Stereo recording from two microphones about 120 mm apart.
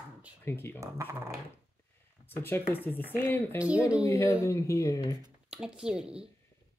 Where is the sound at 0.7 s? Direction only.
25° right (ahead or behind).